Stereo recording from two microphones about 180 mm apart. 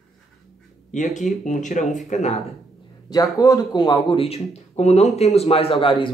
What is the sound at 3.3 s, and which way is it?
Speech, 20° left (ahead or behind).